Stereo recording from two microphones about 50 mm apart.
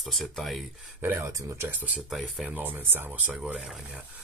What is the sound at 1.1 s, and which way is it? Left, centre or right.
Speech, right.